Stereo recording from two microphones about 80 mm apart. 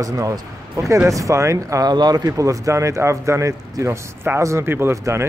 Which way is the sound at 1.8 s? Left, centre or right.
Right.